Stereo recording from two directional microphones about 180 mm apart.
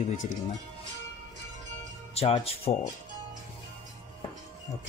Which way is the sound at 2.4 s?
35° left (ahead or behind).